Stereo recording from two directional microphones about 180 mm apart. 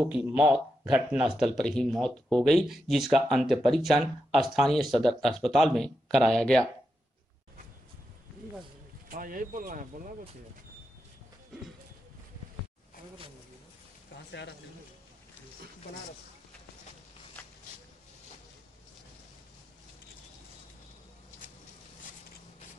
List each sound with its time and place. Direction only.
0.0 s speech: 5° right (ahead or behind)
9.1 s speech: 50° right (ahead or behind)